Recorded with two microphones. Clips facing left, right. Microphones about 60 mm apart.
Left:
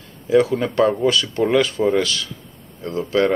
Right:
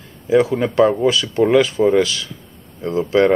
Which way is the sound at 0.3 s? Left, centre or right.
Centre.